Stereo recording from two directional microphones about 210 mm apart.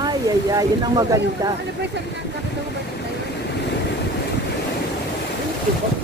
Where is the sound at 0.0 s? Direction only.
20° right (ahead or behind).